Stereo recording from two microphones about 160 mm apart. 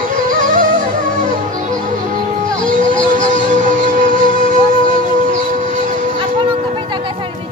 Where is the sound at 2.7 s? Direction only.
55° right (ahead or behind).